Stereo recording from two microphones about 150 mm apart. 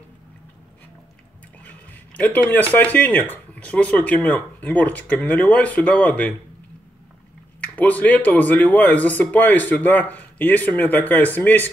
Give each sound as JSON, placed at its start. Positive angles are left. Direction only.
{"t": 1.6, "sound": "speech", "side_deg": 10}
{"t": 7.6, "sound": "speech", "side_deg": 10}